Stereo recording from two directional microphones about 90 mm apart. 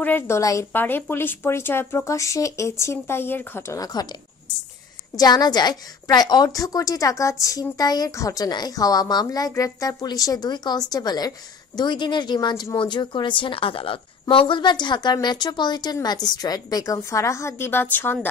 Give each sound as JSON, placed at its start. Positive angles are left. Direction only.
{"t": 0.0, "sound": "speech", "side_deg": 20}
{"t": 0.4, "sound": "a woman's voice", "side_deg": 35}
{"t": 0.7, "sound": "speech", "side_deg": 25}
{"t": 3.7, "sound": "a woman's voice", "side_deg": 45}
{"t": 5.1, "sound": "a woman's voice", "side_deg": 45}
{"t": 14.3, "sound": "a woman's voice", "side_deg": 70}